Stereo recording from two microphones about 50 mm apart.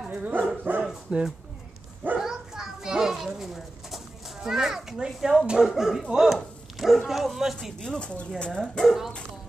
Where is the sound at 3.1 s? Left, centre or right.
Centre.